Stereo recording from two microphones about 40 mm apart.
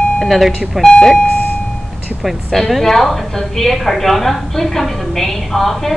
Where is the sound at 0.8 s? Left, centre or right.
Centre.